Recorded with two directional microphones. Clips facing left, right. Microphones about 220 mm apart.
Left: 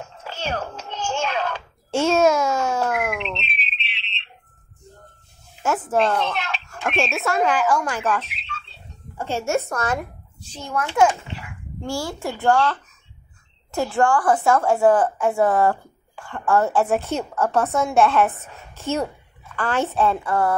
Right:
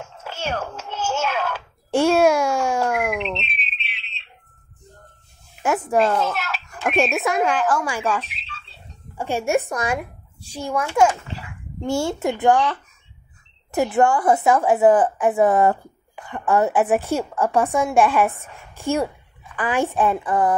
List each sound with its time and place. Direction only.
0.3 s music: 10° right (ahead or behind)
0.7 s a sound: 10° right (ahead or behind)
3.1 s a sound: centre (ahead or behind)
5.9 s a child's voice: centre (ahead or behind)
7.2 s a woman's voice: 15° right (ahead or behind)
11.8 s speech: 25° right (ahead or behind)
13.7 s a woman's voice: 20° right (ahead or behind)